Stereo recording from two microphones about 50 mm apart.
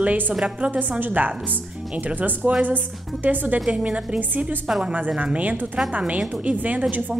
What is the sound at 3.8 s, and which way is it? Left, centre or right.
A woman's voice, right.